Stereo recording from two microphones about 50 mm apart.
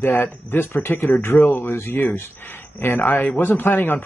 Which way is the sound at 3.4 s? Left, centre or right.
Left.